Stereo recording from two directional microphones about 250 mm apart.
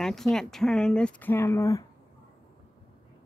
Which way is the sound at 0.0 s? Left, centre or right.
Centre.